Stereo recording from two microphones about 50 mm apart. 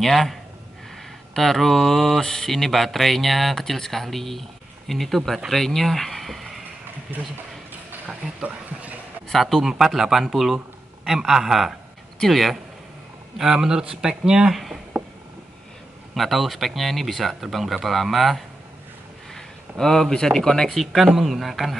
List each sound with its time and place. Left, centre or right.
0.0 s speech: centre
8.4 s a sound: right
9.3 s speech: centre
13.4 s speech: centre
14.5 s speech: centre
16.2 s speech: centre
19.8 s speech: centre
20.7 s speech: centre